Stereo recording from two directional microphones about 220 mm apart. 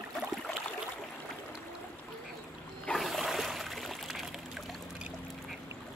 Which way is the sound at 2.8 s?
Centre (ahead or behind).